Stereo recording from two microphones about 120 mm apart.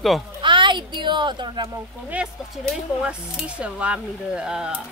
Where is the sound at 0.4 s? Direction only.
40° right (ahead or behind).